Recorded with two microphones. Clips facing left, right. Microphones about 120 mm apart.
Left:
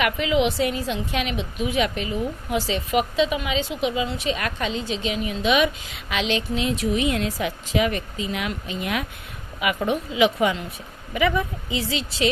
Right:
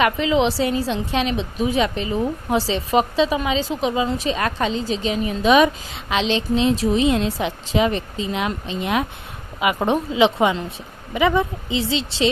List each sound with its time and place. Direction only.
0.0 s a woman's voice: 30° right (ahead or behind)